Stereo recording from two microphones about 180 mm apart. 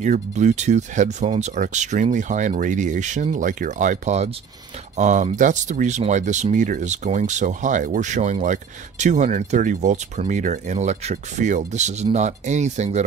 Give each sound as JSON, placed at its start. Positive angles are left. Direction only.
{"t": 0.0, "sound": "speech", "side_deg": -40}